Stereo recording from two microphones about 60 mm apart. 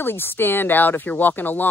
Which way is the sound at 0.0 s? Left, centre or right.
Left.